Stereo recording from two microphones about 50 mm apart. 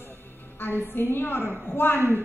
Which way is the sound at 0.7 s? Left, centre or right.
Left.